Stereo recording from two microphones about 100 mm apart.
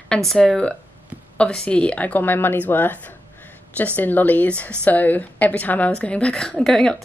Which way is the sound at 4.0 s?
20° left (ahead or behind).